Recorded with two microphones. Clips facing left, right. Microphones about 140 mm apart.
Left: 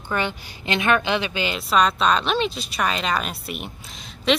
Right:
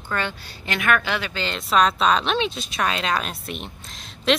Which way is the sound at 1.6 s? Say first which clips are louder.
Right 1 dB; centre (ahead or behind).